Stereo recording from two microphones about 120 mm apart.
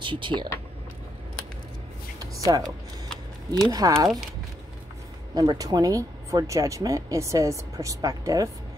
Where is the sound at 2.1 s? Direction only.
30° right (ahead or behind).